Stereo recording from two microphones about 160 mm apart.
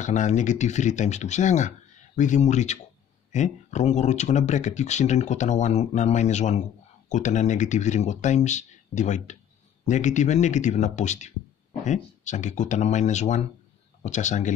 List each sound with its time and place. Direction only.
0.0 s speech: 50° left (ahead or behind)